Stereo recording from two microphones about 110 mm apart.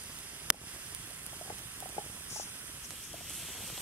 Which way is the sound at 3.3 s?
Centre (ahead or behind).